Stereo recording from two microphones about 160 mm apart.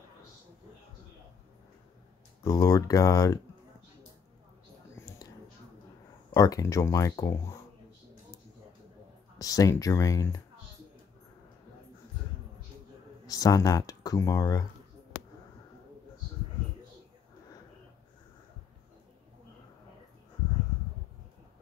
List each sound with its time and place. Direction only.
2.4 s speech: 20° left (ahead or behind)
4.9 s a sound: 25° left (ahead or behind)
6.3 s speech: 20° left (ahead or behind)
9.4 s speech: 20° left (ahead or behind)
13.3 s speech: 20° left (ahead or behind)